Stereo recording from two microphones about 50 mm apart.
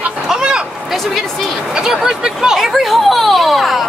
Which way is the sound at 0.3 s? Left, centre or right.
Centre.